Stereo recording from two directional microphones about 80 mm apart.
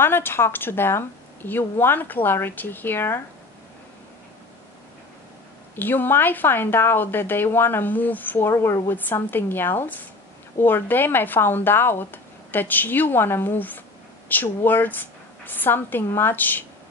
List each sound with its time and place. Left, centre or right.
0.0 s speech: left
5.8 s speech: left